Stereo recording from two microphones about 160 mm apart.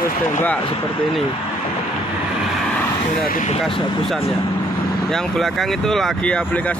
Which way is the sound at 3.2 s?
60° left (ahead or behind).